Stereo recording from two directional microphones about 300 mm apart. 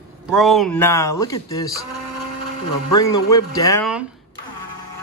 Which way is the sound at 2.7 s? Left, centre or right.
Left.